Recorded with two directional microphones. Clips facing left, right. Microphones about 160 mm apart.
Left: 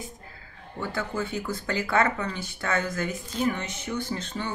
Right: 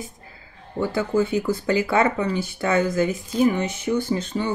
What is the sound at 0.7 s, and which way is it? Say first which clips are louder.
Speech: right 9 dB; 10° right (ahead or behind).